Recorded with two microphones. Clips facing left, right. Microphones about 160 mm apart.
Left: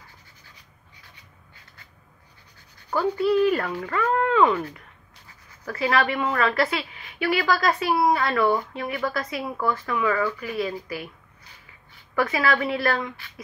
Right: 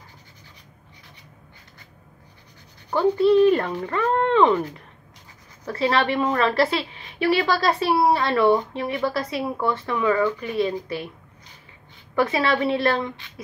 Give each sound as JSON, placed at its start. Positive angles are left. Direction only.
{"t": 2.9, "sound": "a woman's voice", "side_deg": -25}
{"t": 5.7, "sound": "a woman's voice", "side_deg": -30}
{"t": 12.2, "sound": "a woman's voice", "side_deg": -25}